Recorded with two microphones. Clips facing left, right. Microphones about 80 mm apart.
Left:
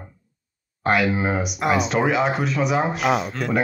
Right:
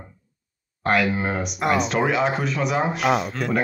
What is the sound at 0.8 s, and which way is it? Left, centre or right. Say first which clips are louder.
Speech: left 1 dB; centre.